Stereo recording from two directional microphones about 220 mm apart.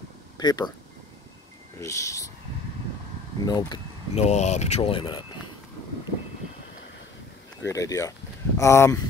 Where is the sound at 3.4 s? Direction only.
20° left (ahead or behind).